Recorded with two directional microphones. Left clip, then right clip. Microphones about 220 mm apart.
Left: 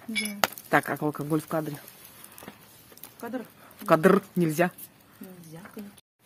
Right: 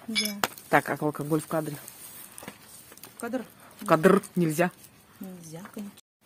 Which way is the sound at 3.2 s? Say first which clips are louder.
Right 3 dB; 45° right (ahead or behind).